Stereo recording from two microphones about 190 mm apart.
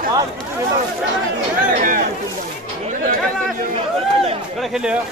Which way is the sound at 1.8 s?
45° right (ahead or behind).